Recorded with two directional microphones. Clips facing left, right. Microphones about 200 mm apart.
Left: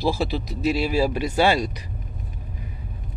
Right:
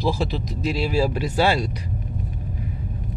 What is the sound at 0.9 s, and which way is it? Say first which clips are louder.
Speech: even; 20° left (ahead or behind).